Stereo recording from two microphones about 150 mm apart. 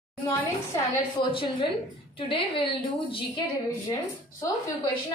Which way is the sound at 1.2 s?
35° left (ahead or behind).